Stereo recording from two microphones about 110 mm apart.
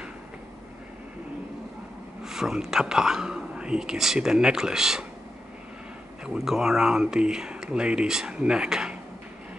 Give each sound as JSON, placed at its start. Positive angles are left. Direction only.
{"t": 2.2, "sound": "speech", "side_deg": -5}
{"t": 6.2, "sound": "speech", "side_deg": -5}